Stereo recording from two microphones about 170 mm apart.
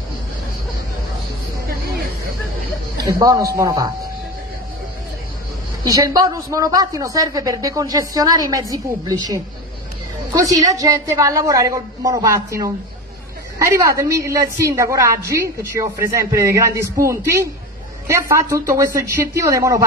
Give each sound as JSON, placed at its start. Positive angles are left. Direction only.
{"t": 3.2, "sound": "speech", "side_deg": -20}
{"t": 5.9, "sound": "a woman's voice", "side_deg": -20}